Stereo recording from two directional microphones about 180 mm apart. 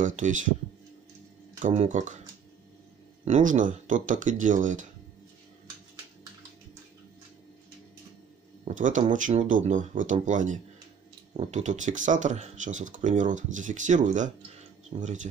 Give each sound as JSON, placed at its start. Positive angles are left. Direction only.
{"t": 0.0, "sound": "speech", "side_deg": -45}
{"t": 1.6, "sound": "speech", "side_deg": -45}
{"t": 3.3, "sound": "speech", "side_deg": -45}
{"t": 8.6, "sound": "speech", "side_deg": -45}